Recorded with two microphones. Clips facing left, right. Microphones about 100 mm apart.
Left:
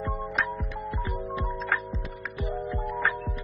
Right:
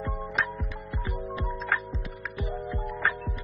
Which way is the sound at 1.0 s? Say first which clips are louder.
Right 1 dB; centre (ahead or behind).